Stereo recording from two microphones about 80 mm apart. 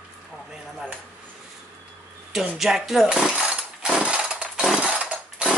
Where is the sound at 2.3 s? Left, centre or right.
Centre.